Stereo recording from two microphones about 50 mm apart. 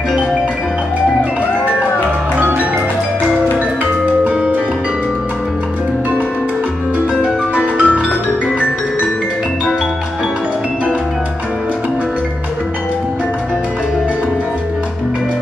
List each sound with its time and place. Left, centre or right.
2.3 s music: right
7.2 s music: right